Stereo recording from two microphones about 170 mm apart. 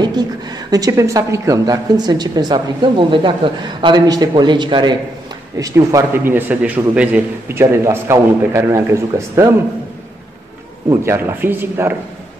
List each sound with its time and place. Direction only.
0.0 s a woman's voice: 25° right (ahead or behind)
10.9 s a man's voice: 15° right (ahead or behind)